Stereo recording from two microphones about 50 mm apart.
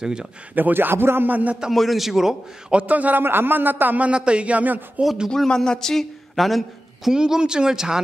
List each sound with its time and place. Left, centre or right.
0.0 s speech: centre
0.6 s a man's voice: right
1.2 s a man's voice: right
1.7 s a man's voice: centre
2.7 s a man's voice: right
3.2 s a man's voice: right
4.0 s a man's voice: right
5.5 s speech: centre
7.1 s speech: centre